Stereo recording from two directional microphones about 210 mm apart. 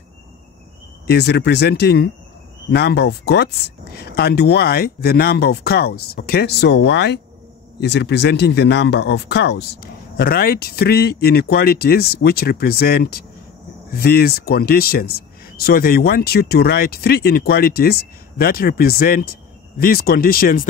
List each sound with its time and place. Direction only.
1.0 s speech: 50° left (ahead or behind)